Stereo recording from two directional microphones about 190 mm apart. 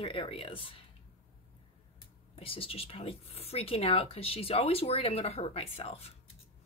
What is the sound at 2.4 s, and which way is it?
Speech, 30° left (ahead or behind).